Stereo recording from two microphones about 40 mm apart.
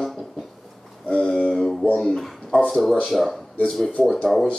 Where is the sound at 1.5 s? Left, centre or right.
Centre.